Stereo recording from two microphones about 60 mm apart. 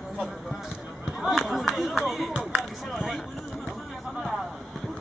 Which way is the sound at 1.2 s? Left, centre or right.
Centre.